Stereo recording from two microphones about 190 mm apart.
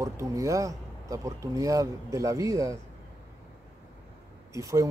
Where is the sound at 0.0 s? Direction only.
15° right (ahead or behind).